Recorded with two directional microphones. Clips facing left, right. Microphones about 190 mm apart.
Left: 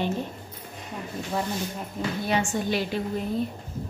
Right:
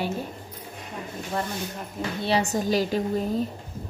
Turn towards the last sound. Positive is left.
turn(degrees=-40)  # may be behind; listen again after turning